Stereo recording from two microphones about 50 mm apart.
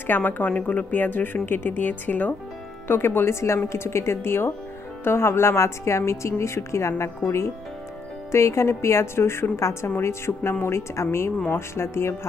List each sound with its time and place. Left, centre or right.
0.0 s a woman's voice: left
2.9 s speech: left
3.3 s a woman's voice: left
8.3 s a woman's voice: left
9.8 s a woman's voice: left